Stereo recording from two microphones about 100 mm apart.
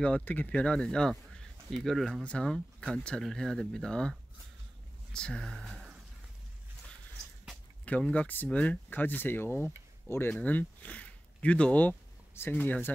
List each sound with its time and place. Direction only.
0.0 s speech: 15° left (ahead or behind); by 5.9 s centre (ahead or behind)
7.8 s speech: 15° left (ahead or behind)